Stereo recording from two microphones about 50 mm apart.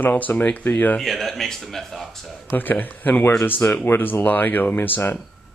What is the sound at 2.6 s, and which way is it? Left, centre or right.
Speech, left.